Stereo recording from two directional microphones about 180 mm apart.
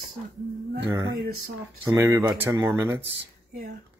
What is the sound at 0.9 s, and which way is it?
Speech, 15° right (ahead or behind).